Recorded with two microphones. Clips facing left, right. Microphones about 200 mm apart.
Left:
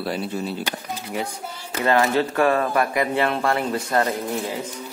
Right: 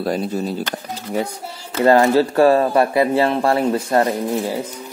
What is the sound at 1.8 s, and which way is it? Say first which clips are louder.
Speech: right 6 dB; 35° right (ahead or behind).